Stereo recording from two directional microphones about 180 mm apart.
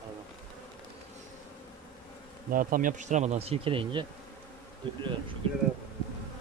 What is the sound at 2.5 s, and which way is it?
Speech, 50° right (ahead or behind).